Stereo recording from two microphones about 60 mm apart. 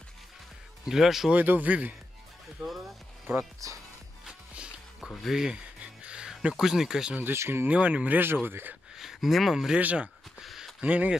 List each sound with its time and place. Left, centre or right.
0.8 s speech: centre
1.3 s speech: right
3.3 s speech: right
4.3 s music: centre
5.3 s speech: centre
7.3 s speech: right
7.6 s speech: right
8.9 s speech: centre
9.8 s speech: right
10.4 s a sound: centre
10.8 s speech: right